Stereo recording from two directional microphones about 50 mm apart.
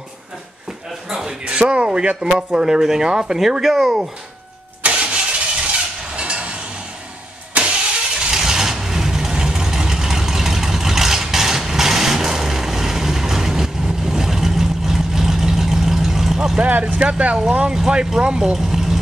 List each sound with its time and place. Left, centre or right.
1.1 s speech: centre
4.8 s vehicle: right
8.2 s vehicle: centre
16.8 s speech: centre